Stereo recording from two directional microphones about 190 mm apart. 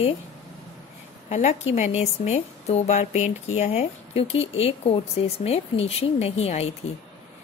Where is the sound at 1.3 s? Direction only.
35° left (ahead or behind).